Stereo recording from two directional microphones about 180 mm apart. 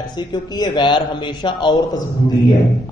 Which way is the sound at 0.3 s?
25° left (ahead or behind).